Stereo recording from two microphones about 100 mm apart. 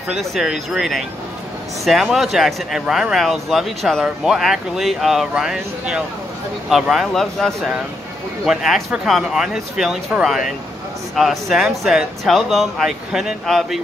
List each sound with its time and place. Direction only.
0.1 s speech: centre (ahead or behind)